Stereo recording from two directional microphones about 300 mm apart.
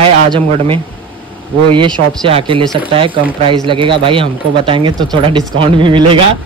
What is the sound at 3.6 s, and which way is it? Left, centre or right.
Speech, centre.